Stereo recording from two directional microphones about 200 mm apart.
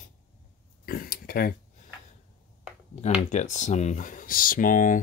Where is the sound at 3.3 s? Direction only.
35° left (ahead or behind).